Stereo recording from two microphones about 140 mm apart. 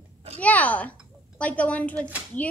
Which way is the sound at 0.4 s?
10° left (ahead or behind).